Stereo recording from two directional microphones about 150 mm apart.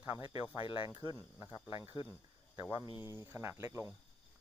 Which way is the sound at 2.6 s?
20° right (ahead or behind).